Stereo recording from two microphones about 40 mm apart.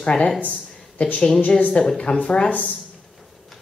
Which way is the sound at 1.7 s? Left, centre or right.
Left.